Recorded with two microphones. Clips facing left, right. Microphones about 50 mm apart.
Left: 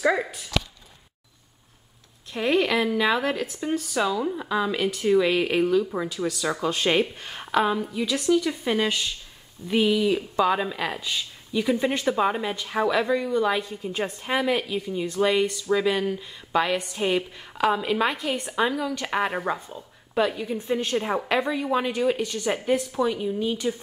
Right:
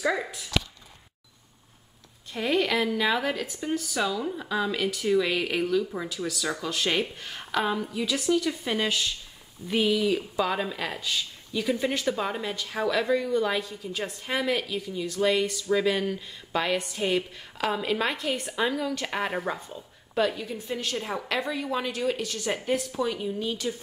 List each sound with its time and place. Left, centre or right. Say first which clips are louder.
0.0 s a woman's voice: left 4 dB; centre
2.3 s a woman's voice: left 3 dB; centre
7.9 s a woman's voice: left 3 dB; centre; by 14.3 s left
14.3 s a woman's voice: left 3 dB; centre
20.7 s a woman's voice: left 6 dB; left